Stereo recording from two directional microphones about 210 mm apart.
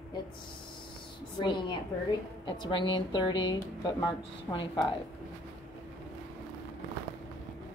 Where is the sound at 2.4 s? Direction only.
20° left (ahead or behind).